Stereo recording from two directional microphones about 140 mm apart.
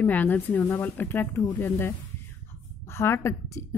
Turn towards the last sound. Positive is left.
turn(degrees=20)  # may be behind; listen again after turning